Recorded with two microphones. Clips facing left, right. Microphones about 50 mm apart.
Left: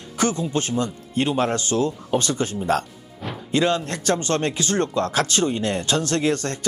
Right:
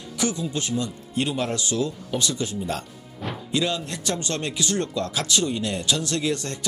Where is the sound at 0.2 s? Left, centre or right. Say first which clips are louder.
Left 4 dB; left.